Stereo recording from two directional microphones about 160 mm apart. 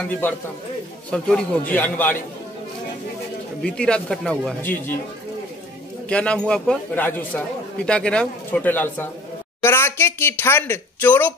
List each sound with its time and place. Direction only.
1.1 s a man's voice: 5° left (ahead or behind)
3.6 s a man's voice: 5° left (ahead or behind)
6.0 s a man's voice: 5° left (ahead or behind)